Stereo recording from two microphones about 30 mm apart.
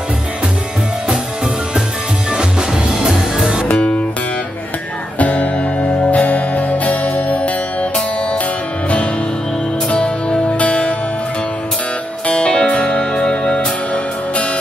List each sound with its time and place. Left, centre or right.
5.2 s music: left
9.9 s music: left
10.6 s music: left
12.3 s music: left
13.2 s music: centre